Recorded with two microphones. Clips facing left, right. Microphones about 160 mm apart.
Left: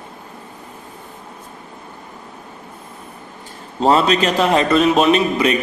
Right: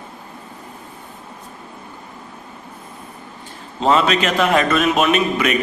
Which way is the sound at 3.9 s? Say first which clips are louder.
Left 1 dB; 35° left (ahead or behind).